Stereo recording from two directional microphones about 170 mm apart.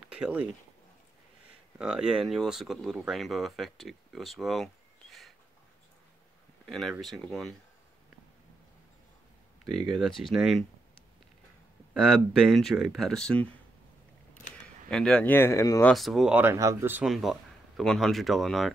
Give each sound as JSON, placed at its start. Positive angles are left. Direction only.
{"t": 0.1, "sound": "speech", "side_deg": -10}
{"t": 1.8, "sound": "speech", "side_deg": -5}
{"t": 6.6, "sound": "speech", "side_deg": 0}
{"t": 9.8, "sound": "speech", "side_deg": 0}
{"t": 11.9, "sound": "speech", "side_deg": -5}
{"t": 14.9, "sound": "speech", "side_deg": 5}
{"t": 15.8, "sound": "speech", "side_deg": 0}